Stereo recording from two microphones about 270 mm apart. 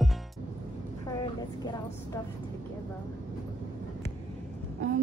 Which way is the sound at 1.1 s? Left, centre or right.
Centre.